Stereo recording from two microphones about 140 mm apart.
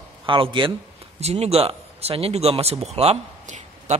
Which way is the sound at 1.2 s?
50° right (ahead or behind).